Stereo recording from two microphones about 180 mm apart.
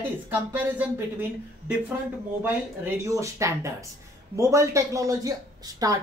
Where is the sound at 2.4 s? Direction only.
15° right (ahead or behind).